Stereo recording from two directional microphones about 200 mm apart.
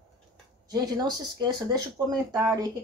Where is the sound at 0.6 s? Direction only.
20° right (ahead or behind).